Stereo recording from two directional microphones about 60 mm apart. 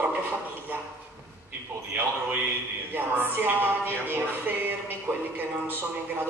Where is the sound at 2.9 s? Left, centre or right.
Right.